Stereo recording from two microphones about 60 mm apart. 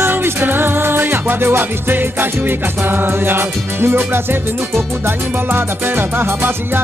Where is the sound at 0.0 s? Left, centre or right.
Right.